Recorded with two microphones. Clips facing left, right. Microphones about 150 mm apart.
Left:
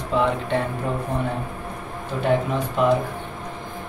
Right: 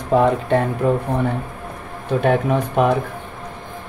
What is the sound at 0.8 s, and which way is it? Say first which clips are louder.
Speech: right 8 dB; 65° right (ahead or behind).